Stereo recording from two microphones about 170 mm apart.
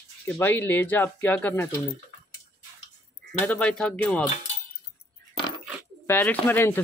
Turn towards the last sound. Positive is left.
turn(degrees=10)  # may be behind; listen again after turning